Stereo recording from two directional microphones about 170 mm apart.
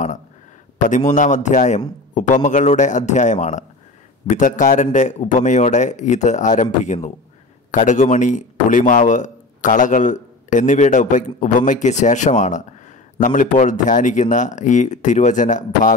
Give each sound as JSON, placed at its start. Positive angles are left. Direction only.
{"t": 0.7, "sound": "a man's voice", "side_deg": 45}